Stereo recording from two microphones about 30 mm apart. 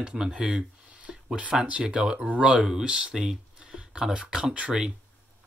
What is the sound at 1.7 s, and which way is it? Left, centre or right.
Speech, right.